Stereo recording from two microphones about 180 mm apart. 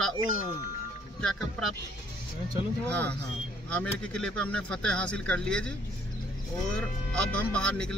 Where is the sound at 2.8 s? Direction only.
5° left (ahead or behind).